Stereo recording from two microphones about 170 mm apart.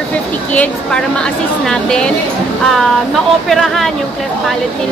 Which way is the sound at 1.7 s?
5° left (ahead or behind).